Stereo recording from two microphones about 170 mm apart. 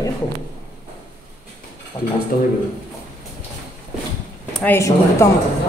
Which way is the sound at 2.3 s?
60° left (ahead or behind).